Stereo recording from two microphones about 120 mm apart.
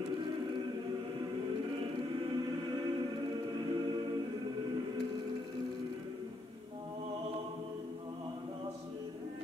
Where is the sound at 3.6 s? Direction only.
40° right (ahead or behind).